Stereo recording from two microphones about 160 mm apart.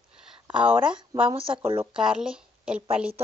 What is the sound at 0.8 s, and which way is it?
Speech, 30° right (ahead or behind).